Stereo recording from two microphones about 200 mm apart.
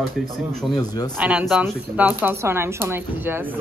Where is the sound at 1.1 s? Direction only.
5° right (ahead or behind).